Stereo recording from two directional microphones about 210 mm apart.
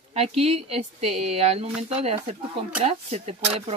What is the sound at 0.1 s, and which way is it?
Speech, 30° right (ahead or behind).